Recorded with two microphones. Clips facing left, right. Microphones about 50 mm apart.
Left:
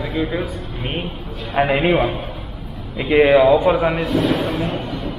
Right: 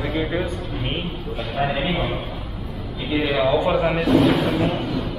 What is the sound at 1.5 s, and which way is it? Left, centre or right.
Speech, left.